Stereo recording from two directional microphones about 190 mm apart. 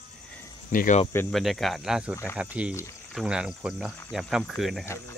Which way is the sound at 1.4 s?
Centre (ahead or behind).